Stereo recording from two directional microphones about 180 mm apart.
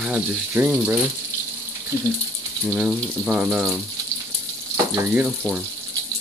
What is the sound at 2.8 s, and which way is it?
Speech, 5° right (ahead or behind).